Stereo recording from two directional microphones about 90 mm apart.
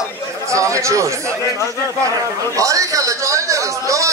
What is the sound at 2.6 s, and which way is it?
A man's voice, 40° right (ahead or behind).